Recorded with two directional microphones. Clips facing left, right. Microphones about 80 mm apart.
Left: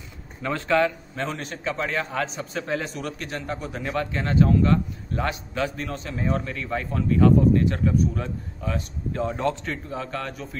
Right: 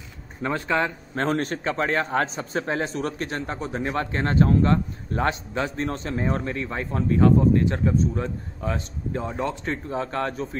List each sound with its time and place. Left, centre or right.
0.4 s a man's voice: right
1.1 s a man's voice: right
9.2 s a man's voice: centre
9.8 s a man's voice: right